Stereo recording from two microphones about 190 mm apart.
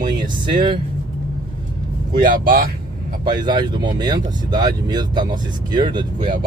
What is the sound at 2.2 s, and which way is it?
Speech, 50° right (ahead or behind).